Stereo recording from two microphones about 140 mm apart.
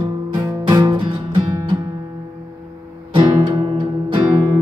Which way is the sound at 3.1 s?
35° right (ahead or behind).